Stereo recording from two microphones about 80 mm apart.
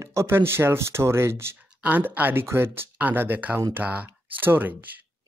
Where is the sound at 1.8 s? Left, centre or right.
Right.